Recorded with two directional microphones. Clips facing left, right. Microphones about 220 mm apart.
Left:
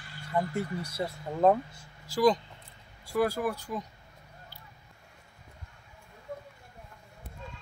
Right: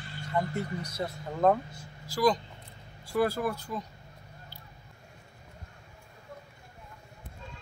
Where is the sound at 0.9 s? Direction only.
5° left (ahead or behind).